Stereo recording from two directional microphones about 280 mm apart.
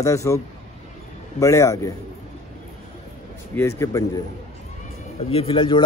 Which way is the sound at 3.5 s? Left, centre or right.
Centre.